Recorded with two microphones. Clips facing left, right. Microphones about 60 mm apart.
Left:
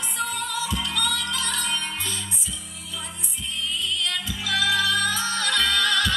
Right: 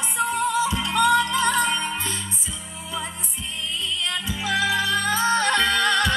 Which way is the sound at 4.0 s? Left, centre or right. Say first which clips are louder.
Right 2 dB; right.